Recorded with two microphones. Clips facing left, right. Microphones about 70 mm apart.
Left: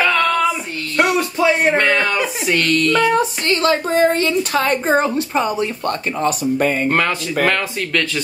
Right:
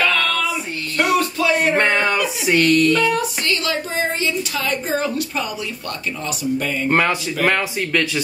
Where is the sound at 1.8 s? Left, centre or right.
Centre.